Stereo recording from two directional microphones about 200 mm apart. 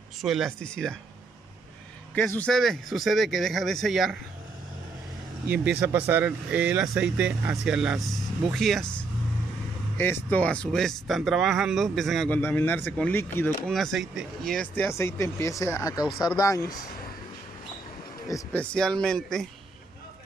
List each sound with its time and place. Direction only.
0.2 s speech: centre (ahead or behind)
2.1 s speech: 10° left (ahead or behind)
5.5 s speech: 5° right (ahead or behind); by 13.7 s 10° left (ahead or behind)
13.7 s speech: centre (ahead or behind); by 16.7 s 15° left (ahead or behind)
18.3 s speech: 5° left (ahead or behind)